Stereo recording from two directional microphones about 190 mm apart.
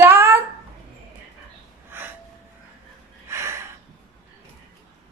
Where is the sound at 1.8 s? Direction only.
10° right (ahead or behind).